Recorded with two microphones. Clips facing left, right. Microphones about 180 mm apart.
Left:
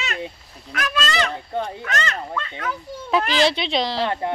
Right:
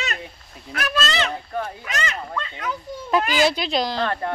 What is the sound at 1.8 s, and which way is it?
Speech, 15° right (ahead or behind).